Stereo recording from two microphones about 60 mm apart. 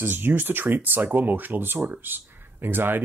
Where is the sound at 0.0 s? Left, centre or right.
Right.